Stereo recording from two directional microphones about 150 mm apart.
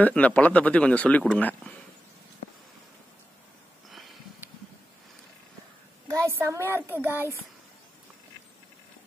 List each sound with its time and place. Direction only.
0.0 s speech: 10° left (ahead or behind)
6.0 s a child's voice: 20° right (ahead or behind)